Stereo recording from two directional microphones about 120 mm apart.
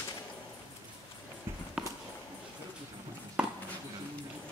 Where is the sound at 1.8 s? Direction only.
5° right (ahead or behind).